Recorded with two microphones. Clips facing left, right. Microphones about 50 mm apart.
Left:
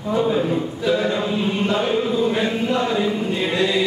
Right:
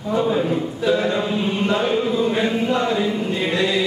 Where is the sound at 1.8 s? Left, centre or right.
Centre.